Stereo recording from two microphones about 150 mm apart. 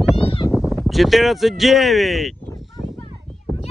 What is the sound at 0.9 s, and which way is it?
Speech, centre (ahead or behind).